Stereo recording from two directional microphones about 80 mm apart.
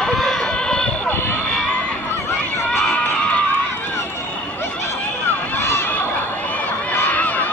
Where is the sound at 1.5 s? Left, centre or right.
Centre.